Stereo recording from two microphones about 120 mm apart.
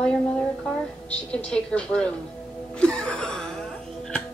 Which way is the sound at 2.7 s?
10° left (ahead or behind).